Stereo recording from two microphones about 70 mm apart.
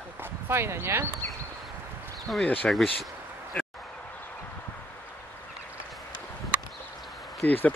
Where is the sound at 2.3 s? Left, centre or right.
Centre.